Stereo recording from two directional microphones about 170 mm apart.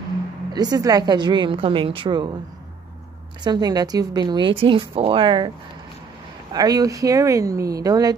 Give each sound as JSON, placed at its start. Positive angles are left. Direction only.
{"t": 0.5, "sound": "speech", "side_deg": -25}
{"t": 3.4, "sound": "speech", "side_deg": -25}
{"t": 6.5, "sound": "speech", "side_deg": -20}